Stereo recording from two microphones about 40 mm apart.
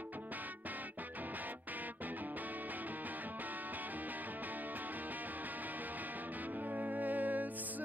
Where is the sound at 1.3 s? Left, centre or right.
Right.